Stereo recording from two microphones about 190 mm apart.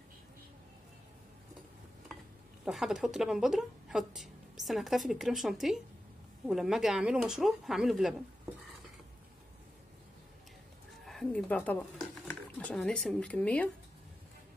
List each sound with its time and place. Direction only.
2.6 s a woman's voice: centre (ahead or behind)
11.1 s speech: 5° left (ahead or behind)